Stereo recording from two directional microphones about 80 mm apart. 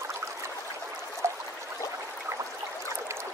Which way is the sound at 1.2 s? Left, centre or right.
Right.